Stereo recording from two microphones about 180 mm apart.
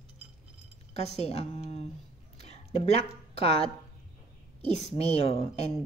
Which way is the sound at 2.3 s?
35° left (ahead or behind).